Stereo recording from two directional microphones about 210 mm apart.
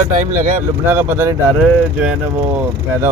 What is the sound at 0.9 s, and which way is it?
Speech, 10° right (ahead or behind).